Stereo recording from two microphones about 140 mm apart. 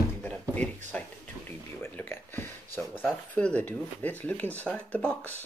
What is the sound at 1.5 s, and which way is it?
Speech, 15° left (ahead or behind).